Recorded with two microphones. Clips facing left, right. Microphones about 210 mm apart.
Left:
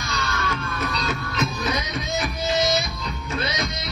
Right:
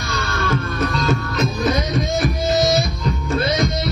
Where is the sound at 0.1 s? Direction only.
55° right (ahead or behind).